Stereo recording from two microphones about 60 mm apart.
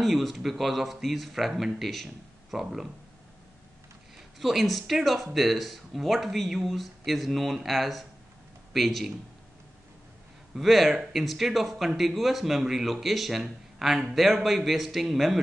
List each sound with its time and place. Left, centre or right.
0.0 s speech: centre
4.4 s speech: centre
10.5 s speech: centre